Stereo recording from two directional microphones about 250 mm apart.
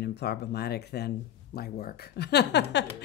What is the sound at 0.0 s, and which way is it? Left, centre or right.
Speech, left.